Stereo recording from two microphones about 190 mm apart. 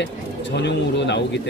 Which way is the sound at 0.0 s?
65° left (ahead or behind).